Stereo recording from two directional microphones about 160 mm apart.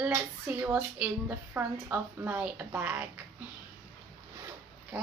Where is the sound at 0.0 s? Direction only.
10° right (ahead or behind).